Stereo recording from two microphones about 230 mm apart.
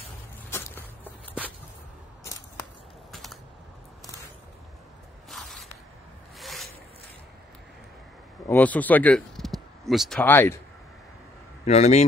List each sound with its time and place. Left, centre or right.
0.5 s walk: centre
3.1 s typing: centre
5.3 s spray: centre
6.4 s zipper: centre
8.5 s speech: centre
11.6 s speech: left